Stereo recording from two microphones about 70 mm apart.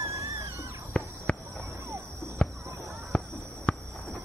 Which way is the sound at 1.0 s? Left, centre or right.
Centre.